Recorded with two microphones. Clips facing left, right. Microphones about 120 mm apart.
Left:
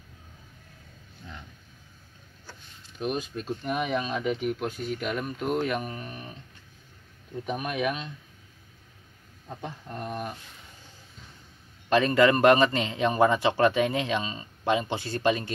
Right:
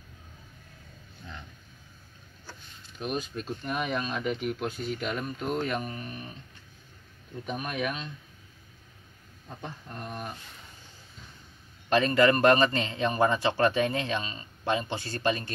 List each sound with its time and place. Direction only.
3.0 s speech: 10° left (ahead or behind)
4.2 s speech: 5° left (ahead or behind)
4.6 s speech: 45° left (ahead or behind)
5.1 s speech: 10° left (ahead or behind)
7.5 s speech: 15° left (ahead or behind)
9.6 s speech: 15° left (ahead or behind)
12.1 s speech: 15° left (ahead or behind)